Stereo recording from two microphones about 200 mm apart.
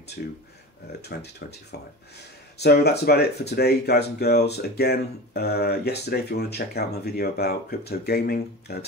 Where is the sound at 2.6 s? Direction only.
55° left (ahead or behind).